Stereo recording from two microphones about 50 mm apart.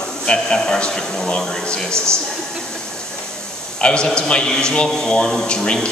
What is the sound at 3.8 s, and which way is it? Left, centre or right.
A man's voice, left.